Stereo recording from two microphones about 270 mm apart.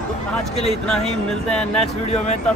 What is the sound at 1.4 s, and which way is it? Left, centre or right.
Speech, centre.